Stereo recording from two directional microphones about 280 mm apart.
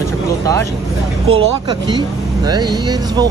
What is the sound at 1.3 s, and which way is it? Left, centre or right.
Speech, centre.